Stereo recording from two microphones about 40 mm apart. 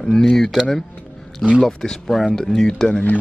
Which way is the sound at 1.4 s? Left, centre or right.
Centre.